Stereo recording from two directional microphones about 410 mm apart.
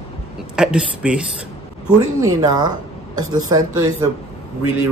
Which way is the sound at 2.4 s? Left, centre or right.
Centre.